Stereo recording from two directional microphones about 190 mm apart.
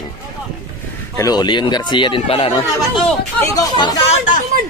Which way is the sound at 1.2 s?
20° left (ahead or behind).